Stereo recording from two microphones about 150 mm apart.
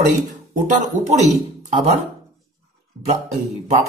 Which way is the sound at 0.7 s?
50° right (ahead or behind).